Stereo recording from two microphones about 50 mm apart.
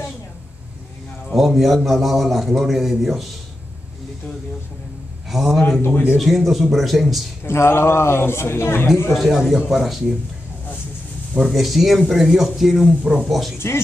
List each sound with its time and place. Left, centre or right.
1.3 s a man's voice: centre
5.3 s a man's voice: centre
5.8 s speech: left
6.1 s a man's voice: centre
7.4 s speech: left
9.1 s a man's voice: centre
11.3 s a man's voice: centre
12.8 s speech: right
13.2 s a man's voice: centre